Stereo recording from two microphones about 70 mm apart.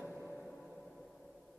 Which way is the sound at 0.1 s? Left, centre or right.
Centre.